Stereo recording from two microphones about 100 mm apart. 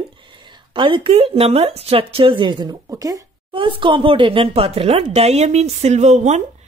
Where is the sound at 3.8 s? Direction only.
60° right (ahead or behind); by 5.9 s 90° right.